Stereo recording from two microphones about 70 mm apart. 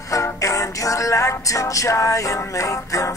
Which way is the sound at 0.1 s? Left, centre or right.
Left.